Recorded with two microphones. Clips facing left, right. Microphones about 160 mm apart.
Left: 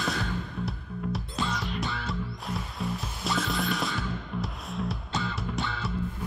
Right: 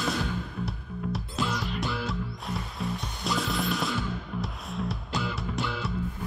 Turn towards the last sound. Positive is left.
turn(degrees=0)  # may be behind; listen again after turning